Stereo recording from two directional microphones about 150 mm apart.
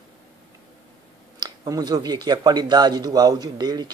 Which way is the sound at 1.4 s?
25° right (ahead or behind).